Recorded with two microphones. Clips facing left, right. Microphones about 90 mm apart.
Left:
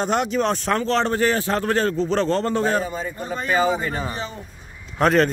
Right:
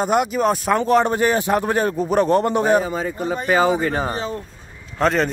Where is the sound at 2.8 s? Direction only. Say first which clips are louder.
Right 5 dB; 65° right (ahead or behind).